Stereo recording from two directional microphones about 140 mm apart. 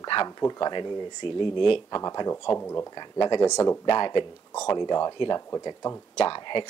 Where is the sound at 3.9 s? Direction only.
35° left (ahead or behind).